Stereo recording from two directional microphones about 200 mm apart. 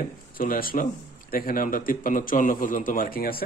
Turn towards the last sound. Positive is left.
turn(degrees=50)  # may be behind; listen again after turning